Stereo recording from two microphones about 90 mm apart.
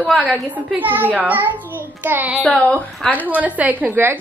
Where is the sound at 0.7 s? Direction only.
20° right (ahead or behind).